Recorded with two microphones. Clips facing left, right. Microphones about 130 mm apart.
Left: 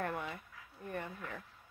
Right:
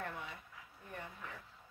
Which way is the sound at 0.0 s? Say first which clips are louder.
Left 6 dB; 55° left (ahead or behind).